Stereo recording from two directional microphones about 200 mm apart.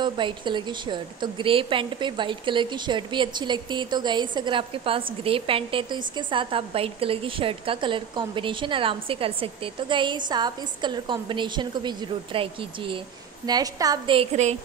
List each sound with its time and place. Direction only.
0.0 s a woman's voice: 25° right (ahead or behind)